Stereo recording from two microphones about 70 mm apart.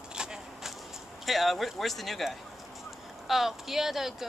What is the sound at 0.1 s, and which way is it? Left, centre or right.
Vehicle, centre.